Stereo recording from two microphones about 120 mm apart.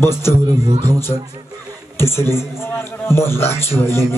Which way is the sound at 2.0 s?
20° left (ahead or behind).